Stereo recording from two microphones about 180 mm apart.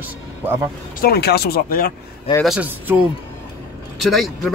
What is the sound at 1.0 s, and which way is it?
Speech, 60° left (ahead or behind).